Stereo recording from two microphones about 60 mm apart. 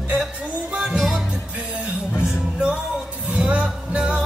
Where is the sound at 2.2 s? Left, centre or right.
Centre.